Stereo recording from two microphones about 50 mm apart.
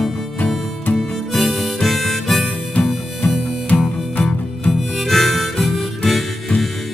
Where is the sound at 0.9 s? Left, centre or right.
Centre.